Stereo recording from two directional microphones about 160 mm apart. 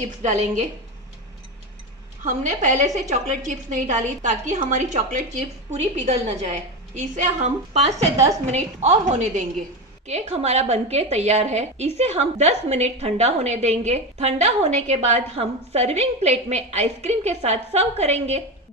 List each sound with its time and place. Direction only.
0.0 s a woman's voice: 45° right (ahead or behind)
2.2 s a woman's voice: 50° right (ahead or behind)